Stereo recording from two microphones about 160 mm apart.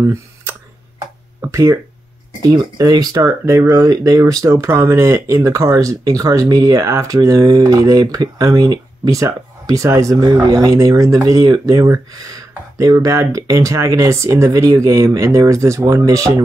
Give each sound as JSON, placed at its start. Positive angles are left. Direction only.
{"t": 0.0, "sound": "clicking", "side_deg": -15}
{"t": 1.4, "sound": "speech", "side_deg": -20}